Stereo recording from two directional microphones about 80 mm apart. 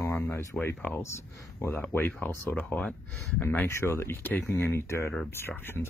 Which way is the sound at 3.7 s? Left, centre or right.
Left.